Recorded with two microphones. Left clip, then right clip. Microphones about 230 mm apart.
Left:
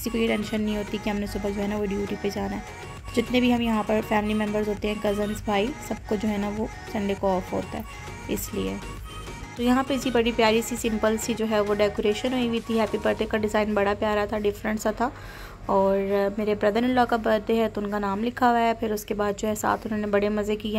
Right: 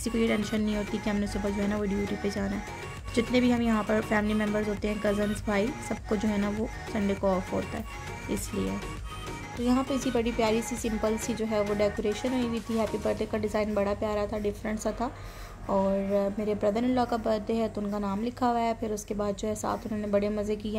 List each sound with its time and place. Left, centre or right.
0.0 s speech: centre
9.7 s speech: centre